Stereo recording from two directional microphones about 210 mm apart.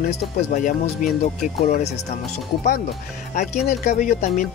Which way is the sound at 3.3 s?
35° left (ahead or behind).